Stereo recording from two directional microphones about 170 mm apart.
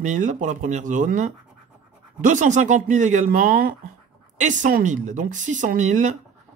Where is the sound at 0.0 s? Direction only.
45° right (ahead or behind).